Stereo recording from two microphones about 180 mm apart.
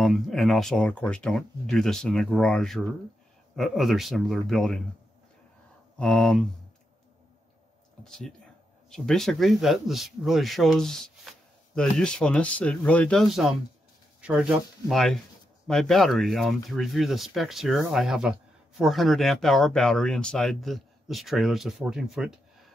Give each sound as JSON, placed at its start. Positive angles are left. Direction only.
{"t": 0.0, "sound": "speech", "side_deg": 0}
{"t": 5.9, "sound": "speech", "side_deg": 5}
{"t": 8.0, "sound": "speech", "side_deg": 5}